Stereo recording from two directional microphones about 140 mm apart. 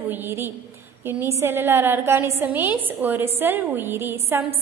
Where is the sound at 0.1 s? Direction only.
15° right (ahead or behind).